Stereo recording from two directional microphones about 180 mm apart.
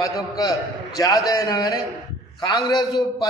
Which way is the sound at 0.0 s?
20° left (ahead or behind).